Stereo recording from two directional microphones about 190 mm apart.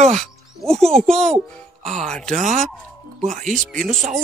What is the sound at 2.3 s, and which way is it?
Speech, 40° right (ahead or behind).